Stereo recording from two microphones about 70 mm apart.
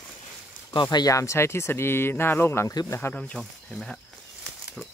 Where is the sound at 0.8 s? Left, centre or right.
Left.